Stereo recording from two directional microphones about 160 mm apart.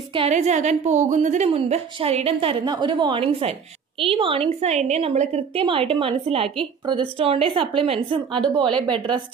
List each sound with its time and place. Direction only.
0.3 s a woman's voice: 45° right (ahead or behind); by 8.7 s 30° right (ahead or behind)